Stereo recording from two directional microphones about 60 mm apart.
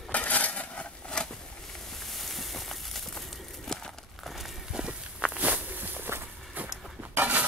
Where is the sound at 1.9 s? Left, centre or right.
Centre.